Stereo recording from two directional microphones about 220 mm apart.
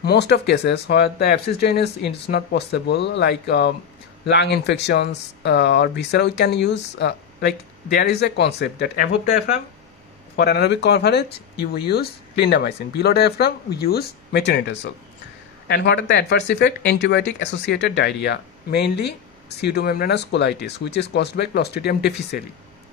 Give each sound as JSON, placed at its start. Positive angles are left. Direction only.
{"t": 0.0, "sound": "speech", "side_deg": 50}
{"t": 10.3, "sound": "speech", "side_deg": 45}